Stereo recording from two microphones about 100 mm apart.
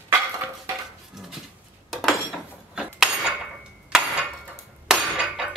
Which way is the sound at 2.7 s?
10° right (ahead or behind).